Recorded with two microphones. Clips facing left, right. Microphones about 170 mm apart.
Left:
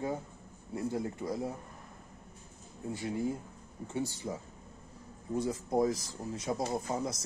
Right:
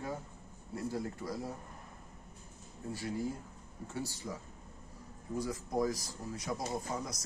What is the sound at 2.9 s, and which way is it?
Speech, 20° left (ahead or behind).